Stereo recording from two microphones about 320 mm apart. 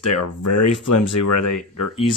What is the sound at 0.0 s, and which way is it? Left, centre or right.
Speech, left.